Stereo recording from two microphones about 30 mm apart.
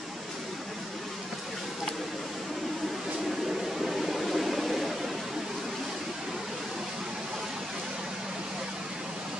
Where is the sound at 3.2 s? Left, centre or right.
Centre.